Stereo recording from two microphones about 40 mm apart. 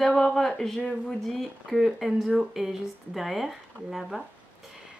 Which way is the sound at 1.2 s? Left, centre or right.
Centre.